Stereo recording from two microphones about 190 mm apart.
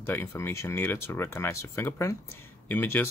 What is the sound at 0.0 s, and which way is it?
Speech, 10° left (ahead or behind).